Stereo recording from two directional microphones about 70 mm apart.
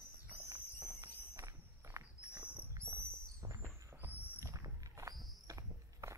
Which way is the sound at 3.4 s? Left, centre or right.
Right.